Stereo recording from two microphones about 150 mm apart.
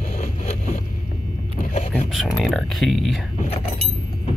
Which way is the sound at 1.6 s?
55° left (ahead or behind).